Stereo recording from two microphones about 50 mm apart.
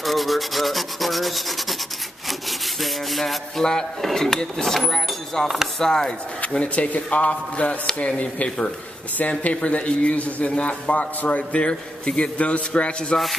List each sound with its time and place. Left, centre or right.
0.0 s rub: centre
2.8 s rub: centre
3.6 s speech: centre
6.6 s a man's voice: left
8.5 s speech: centre
9.2 s a man's voice: left